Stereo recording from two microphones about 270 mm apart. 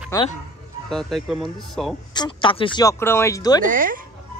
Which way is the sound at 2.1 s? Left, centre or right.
Centre.